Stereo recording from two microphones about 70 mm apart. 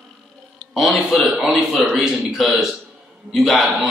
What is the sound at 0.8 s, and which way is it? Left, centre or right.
Speech, centre.